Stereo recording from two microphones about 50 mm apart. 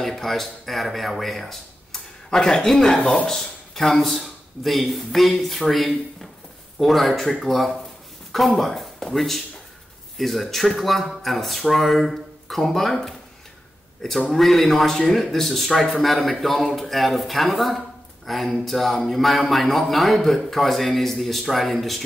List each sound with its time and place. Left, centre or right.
0.0 s speech: centre
3.0 s speech: centre
3.3 s a man's voice: centre
14.3 s a man's voice: centre